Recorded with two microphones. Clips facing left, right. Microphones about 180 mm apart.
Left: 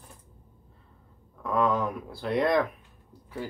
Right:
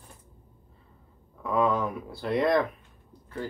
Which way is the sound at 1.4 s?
Centre (ahead or behind).